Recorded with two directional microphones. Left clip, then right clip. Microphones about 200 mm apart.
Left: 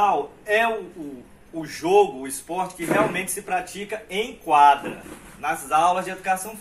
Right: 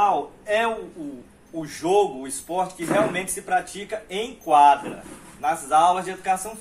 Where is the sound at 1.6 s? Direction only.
15° right (ahead or behind).